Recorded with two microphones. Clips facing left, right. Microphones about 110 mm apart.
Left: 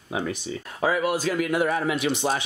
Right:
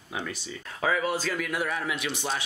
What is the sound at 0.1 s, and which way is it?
Speech, 30° left (ahead or behind).